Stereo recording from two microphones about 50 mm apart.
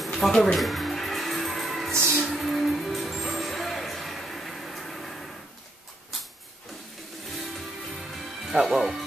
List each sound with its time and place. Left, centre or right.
0.0 s music: centre
1.9 s music: right
2.2 s music: centre
7.2 s music: centre
8.5 s speech: centre